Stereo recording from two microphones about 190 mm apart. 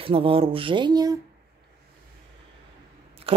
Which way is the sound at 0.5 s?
25° right (ahead or behind).